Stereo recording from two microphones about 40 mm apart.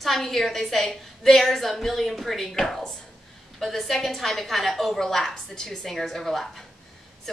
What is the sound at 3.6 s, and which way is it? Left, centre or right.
A woman's voice, centre.